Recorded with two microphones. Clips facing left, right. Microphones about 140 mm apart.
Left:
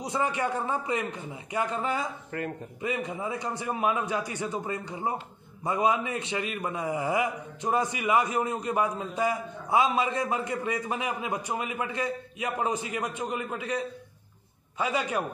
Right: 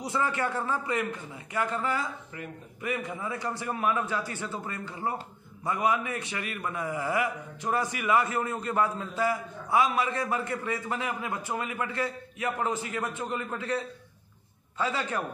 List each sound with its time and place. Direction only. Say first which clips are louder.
0.0 s a man's voice: left 1 dB; 20° left (ahead or behind)